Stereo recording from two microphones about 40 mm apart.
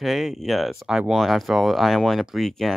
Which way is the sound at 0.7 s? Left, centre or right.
Centre.